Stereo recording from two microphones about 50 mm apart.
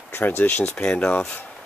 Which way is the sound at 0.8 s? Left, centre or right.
Centre.